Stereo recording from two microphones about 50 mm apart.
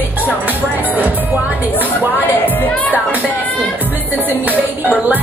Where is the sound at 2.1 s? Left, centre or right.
Left.